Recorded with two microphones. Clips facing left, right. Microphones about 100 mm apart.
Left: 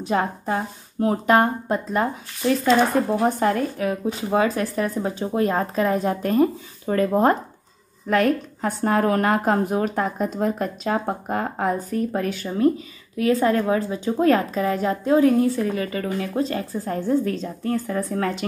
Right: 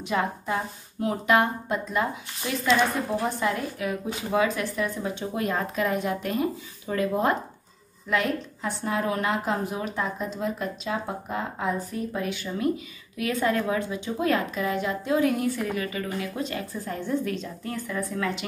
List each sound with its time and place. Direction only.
0.0 s a woman's voice: 35° left (ahead or behind)